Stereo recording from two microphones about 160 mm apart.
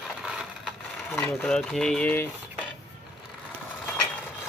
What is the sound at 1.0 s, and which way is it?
Speech, 5° left (ahead or behind).